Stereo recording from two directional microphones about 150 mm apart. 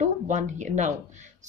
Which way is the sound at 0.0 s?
55° right (ahead or behind).